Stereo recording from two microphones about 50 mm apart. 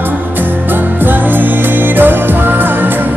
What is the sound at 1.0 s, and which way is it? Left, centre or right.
Music, right.